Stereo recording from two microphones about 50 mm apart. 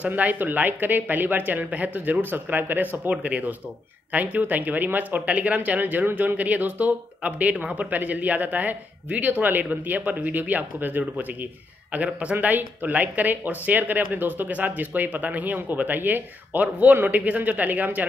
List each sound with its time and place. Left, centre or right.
0.0 s speech: right
11.9 s speech: right